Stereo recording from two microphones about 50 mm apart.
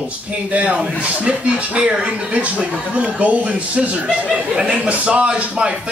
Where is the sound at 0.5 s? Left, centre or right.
Right.